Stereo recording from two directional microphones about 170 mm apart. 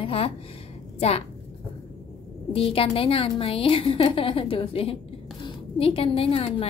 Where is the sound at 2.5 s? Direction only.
35° left (ahead or behind).